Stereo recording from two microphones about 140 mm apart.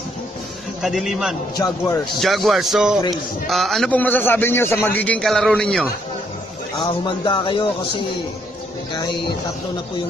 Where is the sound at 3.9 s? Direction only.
15° left (ahead or behind).